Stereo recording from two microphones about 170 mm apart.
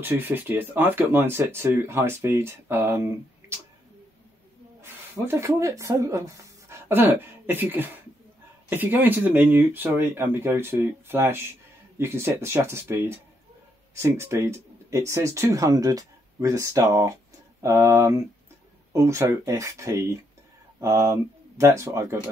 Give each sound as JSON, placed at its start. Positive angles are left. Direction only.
{"t": 0.0, "sound": "speech", "side_deg": -10}
{"t": 4.8, "sound": "speech", "side_deg": -15}